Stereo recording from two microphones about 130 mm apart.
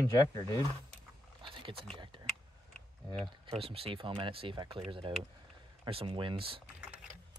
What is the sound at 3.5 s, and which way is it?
Speech, 45° right (ahead or behind).